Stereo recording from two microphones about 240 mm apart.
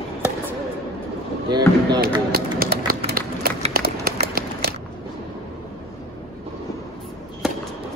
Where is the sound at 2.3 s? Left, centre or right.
Right.